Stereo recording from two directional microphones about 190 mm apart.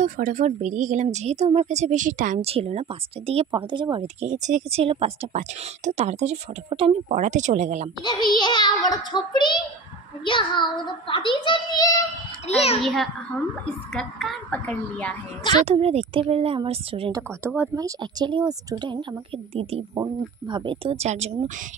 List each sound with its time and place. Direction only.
0.0 s speech: 40° right (ahead or behind)
8.0 s a child's voice: 25° left (ahead or behind)
12.4 s a child's voice: 35° left (ahead or behind)
12.8 s a child's voice: centre (ahead or behind)
15.5 s speech: 30° right (ahead or behind)